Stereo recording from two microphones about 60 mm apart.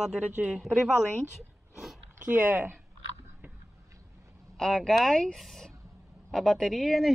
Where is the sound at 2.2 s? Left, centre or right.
Right.